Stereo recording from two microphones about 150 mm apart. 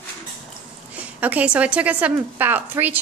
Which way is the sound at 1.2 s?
10° right (ahead or behind).